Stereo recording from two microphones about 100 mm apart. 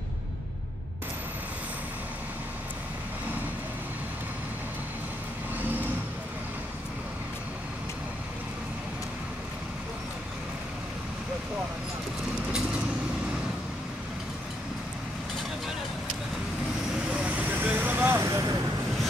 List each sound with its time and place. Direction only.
17.1 s vehicle: 15° right (ahead or behind)
18.2 s vehicle: 35° right (ahead or behind)